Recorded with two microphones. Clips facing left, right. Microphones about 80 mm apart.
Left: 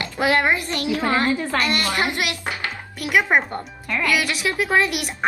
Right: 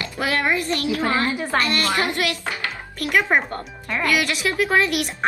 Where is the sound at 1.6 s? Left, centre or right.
Left.